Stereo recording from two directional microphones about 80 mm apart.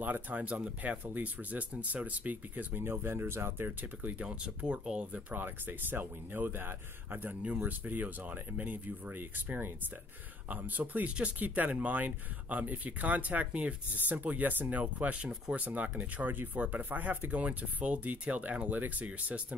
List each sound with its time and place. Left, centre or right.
0.0 s speech: right
5.3 s speech: right